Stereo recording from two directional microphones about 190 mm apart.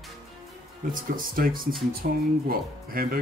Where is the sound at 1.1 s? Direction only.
50° right (ahead or behind).